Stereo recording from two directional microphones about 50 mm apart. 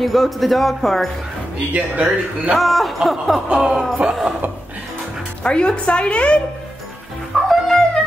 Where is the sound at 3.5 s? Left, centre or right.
Centre.